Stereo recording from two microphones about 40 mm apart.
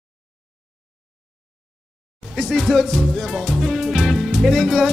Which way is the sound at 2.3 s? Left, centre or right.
Centre.